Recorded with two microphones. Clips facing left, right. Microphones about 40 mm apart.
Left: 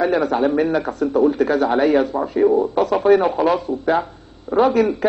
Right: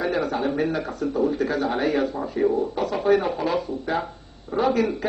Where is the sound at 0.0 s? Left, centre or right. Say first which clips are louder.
Left 6 dB; left.